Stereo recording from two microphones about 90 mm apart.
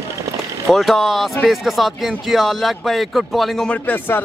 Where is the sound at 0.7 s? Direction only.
Centre (ahead or behind).